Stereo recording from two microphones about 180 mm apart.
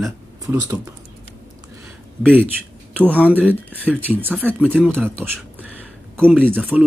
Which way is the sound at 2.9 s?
10° right (ahead or behind).